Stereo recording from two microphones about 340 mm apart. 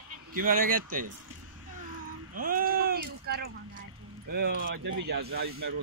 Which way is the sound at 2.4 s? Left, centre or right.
Right.